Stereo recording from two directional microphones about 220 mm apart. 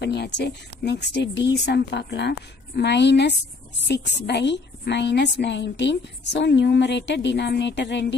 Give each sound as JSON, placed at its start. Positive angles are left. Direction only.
{"t": 0.0, "sound": "a woman's voice", "side_deg": 50}